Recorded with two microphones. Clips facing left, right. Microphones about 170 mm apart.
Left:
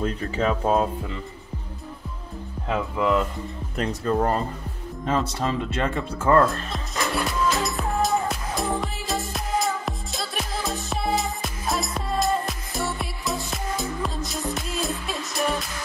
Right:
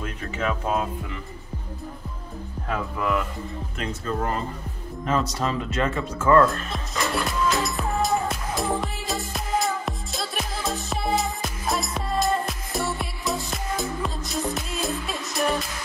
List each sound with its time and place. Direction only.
0.0 s speech: 35° left (ahead or behind)
2.7 s speech: 25° left (ahead or behind)
3.7 s speech: 40° left (ahead or behind)
6.4 s speech: centre (ahead or behind)
7.2 s music: centre (ahead or behind)